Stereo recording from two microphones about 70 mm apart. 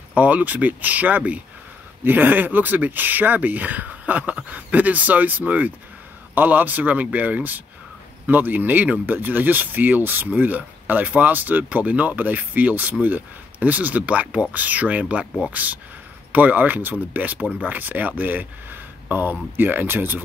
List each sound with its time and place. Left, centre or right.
0.1 s speech: right